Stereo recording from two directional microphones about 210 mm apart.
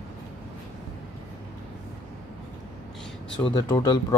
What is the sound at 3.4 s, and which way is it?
Speech, 15° left (ahead or behind).